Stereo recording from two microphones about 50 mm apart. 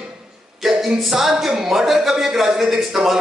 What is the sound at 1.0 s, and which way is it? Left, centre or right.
A woman's voice, centre.